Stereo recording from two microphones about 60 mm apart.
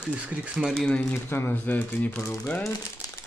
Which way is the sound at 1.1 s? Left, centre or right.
Left.